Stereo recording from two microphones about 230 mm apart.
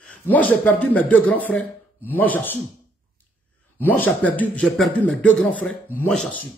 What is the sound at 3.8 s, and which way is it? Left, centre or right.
A man's voice, centre.